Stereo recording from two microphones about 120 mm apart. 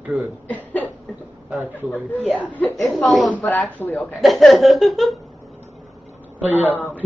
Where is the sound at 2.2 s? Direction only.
15° left (ahead or behind).